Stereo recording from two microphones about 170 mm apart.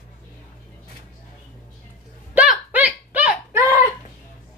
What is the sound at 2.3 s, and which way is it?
Hiccup, 10° right (ahead or behind).